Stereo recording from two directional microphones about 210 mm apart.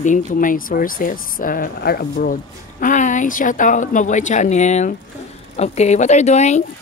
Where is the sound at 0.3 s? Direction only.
40° left (ahead or behind).